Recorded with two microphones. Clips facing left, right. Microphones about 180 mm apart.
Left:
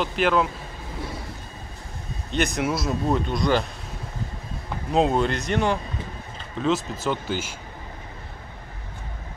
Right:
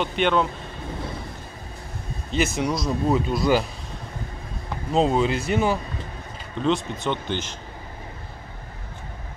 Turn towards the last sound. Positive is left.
turn(degrees=5)  # may be behind; listen again after turning